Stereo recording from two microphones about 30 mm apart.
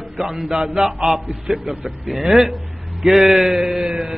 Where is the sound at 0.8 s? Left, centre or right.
Centre.